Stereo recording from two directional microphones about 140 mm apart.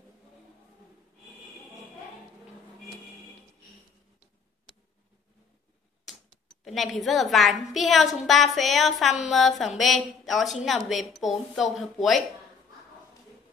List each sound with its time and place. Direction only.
6.6 s a woman's voice: centre (ahead or behind)